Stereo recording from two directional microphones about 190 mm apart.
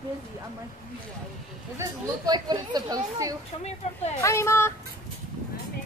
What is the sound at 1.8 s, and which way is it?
Speech, 20° right (ahead or behind).